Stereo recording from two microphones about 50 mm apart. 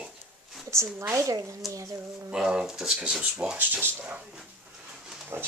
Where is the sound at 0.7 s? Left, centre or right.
Right.